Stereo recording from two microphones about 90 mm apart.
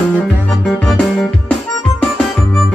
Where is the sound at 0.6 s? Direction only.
5° left (ahead or behind).